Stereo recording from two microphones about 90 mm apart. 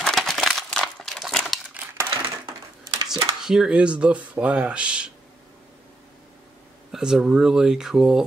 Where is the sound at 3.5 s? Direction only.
10° right (ahead or behind).